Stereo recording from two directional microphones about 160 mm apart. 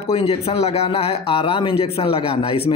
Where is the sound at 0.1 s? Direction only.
40° left (ahead or behind).